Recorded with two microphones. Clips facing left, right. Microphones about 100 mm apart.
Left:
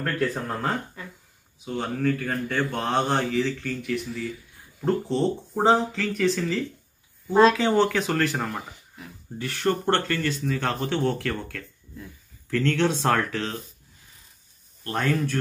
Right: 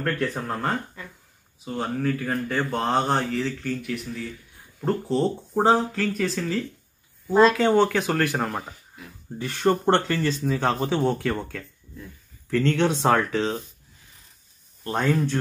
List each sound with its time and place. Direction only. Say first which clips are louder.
0.0 s speech: even; centre (ahead or behind)
14.8 s speech: right 2 dB; 15° right (ahead or behind)